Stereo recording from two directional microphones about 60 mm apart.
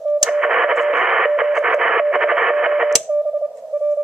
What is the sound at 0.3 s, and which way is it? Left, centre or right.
Radio, centre.